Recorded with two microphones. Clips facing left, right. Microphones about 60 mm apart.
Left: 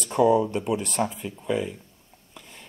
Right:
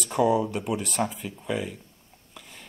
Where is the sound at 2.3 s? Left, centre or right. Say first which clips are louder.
Even; centre.